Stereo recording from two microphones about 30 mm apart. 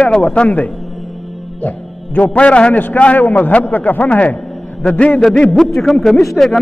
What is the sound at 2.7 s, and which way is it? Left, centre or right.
Speech, left.